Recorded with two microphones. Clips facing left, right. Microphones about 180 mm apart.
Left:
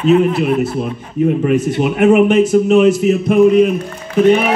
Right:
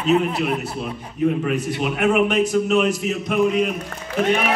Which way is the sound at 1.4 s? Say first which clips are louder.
Left 8 dB; 45° left (ahead or behind).